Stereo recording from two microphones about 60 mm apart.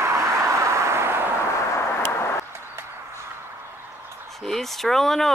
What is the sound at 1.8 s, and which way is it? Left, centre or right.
Vehicle, left.